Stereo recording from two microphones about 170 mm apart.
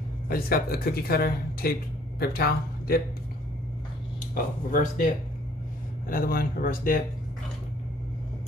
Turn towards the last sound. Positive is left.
turn(degrees=55)  # may be behind; listen again after turning